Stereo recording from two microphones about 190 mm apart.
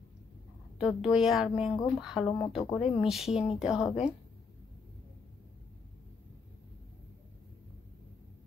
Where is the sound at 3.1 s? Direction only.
Centre (ahead or behind).